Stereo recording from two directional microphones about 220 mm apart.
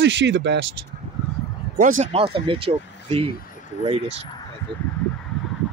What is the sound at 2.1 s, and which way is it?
Speech, 25° right (ahead or behind).